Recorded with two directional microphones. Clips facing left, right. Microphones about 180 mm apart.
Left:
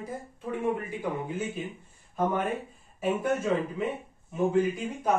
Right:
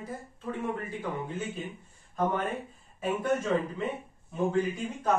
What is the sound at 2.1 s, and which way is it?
Speech, 10° left (ahead or behind).